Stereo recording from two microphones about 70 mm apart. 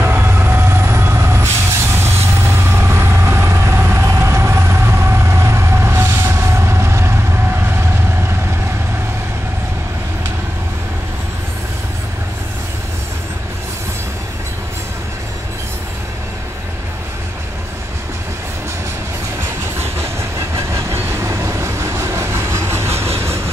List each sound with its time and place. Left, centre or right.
0.0 s vehicle: right
19.4 s train: right